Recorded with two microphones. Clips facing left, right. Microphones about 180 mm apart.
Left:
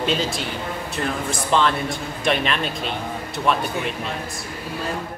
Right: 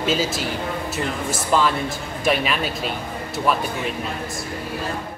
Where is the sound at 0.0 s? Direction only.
Centre (ahead or behind).